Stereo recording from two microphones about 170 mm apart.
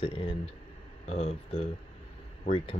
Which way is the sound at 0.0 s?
35° left (ahead or behind).